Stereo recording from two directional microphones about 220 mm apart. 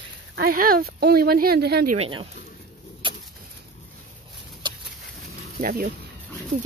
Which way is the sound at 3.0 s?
20° right (ahead or behind).